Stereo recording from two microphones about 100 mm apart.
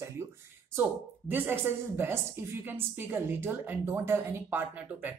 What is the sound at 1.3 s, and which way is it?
A woman's voice, 20° right (ahead or behind).